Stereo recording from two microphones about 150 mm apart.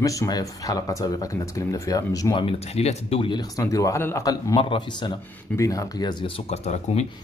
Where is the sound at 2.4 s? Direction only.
45° left (ahead or behind); by 4.6 s 25° left (ahead or behind).